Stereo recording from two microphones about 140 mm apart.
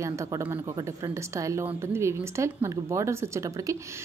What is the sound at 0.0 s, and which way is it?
A woman's voice, 20° right (ahead or behind).